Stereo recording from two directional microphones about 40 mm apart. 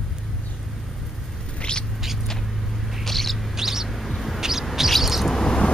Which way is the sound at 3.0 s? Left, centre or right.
Centre.